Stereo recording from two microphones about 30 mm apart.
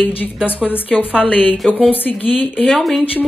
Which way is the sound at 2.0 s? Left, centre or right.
Left.